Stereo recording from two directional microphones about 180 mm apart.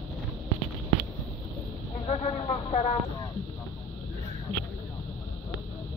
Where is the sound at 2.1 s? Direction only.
30° left (ahead or behind).